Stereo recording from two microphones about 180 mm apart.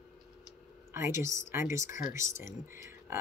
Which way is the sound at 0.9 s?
15° right (ahead or behind).